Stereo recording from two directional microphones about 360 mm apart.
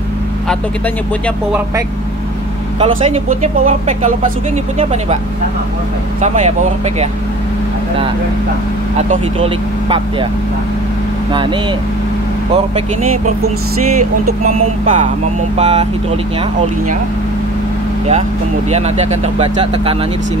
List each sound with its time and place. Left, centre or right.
2.8 s speech: centre
6.2 s speech: centre
8.9 s speech: centre
14.4 s speech: centre
18.7 s speech: centre